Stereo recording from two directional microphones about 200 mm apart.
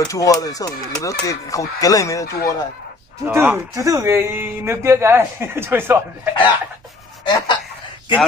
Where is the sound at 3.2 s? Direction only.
10° right (ahead or behind).